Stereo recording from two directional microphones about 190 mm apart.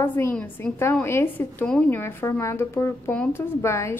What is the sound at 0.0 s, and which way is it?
A woman's voice, 10° left (ahead or behind).